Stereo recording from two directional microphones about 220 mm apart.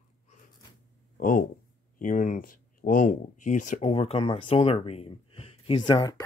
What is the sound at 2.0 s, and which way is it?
Speech, 35° left (ahead or behind).